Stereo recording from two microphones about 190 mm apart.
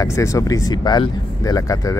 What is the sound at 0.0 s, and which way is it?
Speech, 15° left (ahead or behind).